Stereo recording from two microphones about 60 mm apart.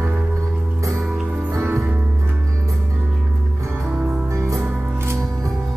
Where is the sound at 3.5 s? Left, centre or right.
Right.